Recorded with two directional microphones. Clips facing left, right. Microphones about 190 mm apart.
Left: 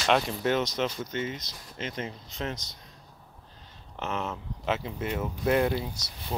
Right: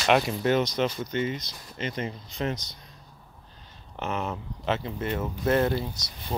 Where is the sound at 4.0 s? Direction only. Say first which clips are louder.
Right 2 dB; centre (ahead or behind).